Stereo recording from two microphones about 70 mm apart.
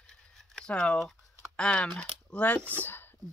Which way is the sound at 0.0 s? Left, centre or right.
Centre.